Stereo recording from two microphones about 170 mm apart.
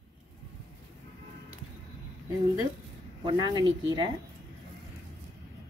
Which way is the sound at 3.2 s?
25° right (ahead or behind).